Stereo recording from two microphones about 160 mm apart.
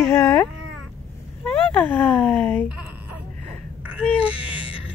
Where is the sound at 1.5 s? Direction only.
10° left (ahead or behind).